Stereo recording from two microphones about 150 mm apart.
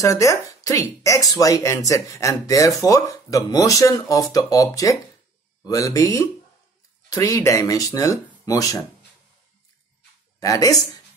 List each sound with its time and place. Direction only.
0.0 s speech: 20° left (ahead or behind)
10.4 s speech: 25° left (ahead or behind)